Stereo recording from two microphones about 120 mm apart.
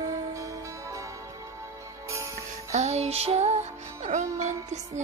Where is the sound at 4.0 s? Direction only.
75° right (ahead or behind).